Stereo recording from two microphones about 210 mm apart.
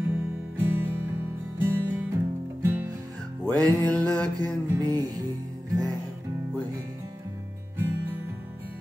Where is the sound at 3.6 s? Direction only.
5° left (ahead or behind).